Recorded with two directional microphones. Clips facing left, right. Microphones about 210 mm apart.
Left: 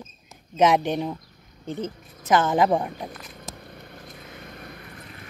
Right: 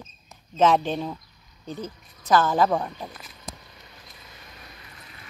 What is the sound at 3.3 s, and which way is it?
Vehicle, 55° left (ahead or behind).